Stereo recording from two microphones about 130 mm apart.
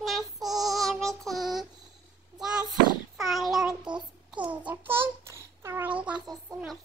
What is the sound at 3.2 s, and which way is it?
Child singing, centre (ahead or behind).